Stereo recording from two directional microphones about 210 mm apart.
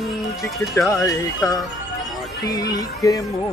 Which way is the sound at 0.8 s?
15° left (ahead or behind).